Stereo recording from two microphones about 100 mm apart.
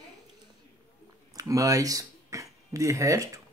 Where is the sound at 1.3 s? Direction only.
35° right (ahead or behind).